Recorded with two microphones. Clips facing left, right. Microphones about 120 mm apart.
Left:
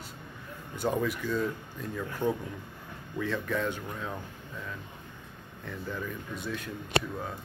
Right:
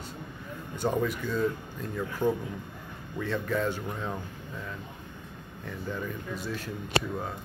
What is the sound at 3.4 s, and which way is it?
Speech, 5° right (ahead or behind).